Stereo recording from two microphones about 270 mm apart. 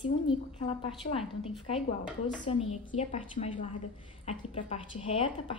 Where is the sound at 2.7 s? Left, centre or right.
Left.